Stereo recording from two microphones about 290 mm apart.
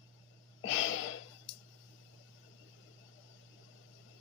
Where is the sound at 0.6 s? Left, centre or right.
Left.